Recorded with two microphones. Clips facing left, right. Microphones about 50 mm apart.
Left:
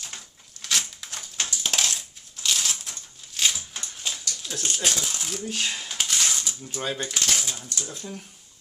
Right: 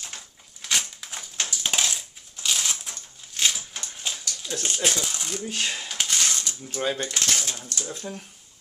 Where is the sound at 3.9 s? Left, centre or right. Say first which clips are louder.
Even; centre.